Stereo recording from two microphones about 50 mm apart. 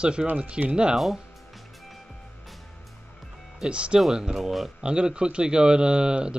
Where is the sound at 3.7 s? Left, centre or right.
Right.